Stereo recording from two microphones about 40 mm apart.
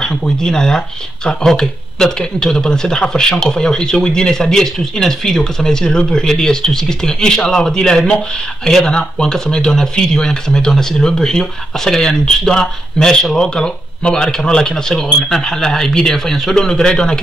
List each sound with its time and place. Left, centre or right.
0.0 s speech: centre